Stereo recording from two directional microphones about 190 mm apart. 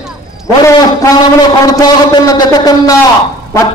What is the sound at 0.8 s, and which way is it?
A man's voice, 20° left (ahead or behind).